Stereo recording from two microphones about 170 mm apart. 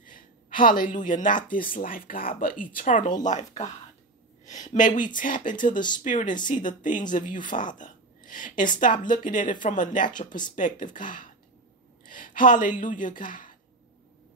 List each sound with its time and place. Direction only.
0.0 s a woman's voice: 50° left (ahead or behind)